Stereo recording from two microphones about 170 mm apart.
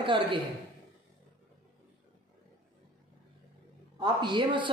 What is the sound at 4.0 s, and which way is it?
Speech, 25° right (ahead or behind).